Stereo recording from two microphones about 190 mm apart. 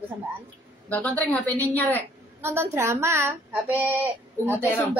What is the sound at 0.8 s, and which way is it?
A woman's voice, 5° left (ahead or behind).